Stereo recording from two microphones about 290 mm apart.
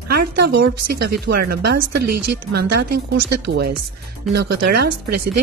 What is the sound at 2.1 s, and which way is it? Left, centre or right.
Speech, right.